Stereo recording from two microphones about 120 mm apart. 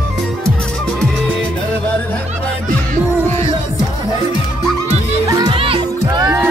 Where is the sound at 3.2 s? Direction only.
20° left (ahead or behind).